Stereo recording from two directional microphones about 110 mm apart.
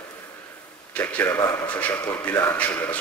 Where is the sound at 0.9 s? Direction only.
15° left (ahead or behind).